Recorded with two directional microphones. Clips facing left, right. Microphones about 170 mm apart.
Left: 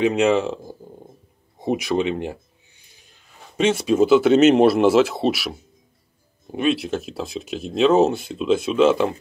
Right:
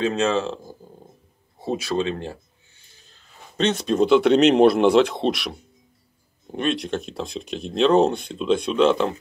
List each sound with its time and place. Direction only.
0.0 s speech: 15° left (ahead or behind)
1.6 s speech: 15° left (ahead or behind)